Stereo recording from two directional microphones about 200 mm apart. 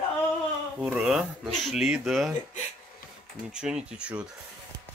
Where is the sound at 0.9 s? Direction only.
Centre (ahead or behind).